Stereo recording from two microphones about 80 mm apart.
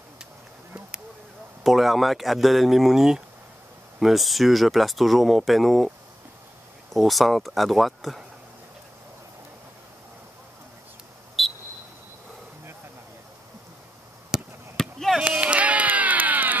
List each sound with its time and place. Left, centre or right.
1.6 s speech: centre
11.4 s cricket: centre
14.3 s basketball bounce: centre
14.8 s chop: centre
15.2 s a sound: centre